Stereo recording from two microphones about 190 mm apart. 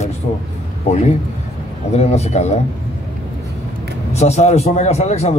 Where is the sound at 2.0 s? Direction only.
35° left (ahead or behind).